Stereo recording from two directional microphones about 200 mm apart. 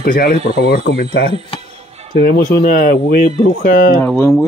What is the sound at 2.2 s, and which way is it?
Speech, 50° left (ahead or behind).